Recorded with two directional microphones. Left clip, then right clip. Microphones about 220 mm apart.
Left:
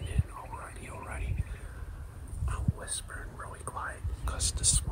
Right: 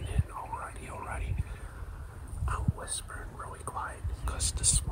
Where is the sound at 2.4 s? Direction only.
10° right (ahead or behind).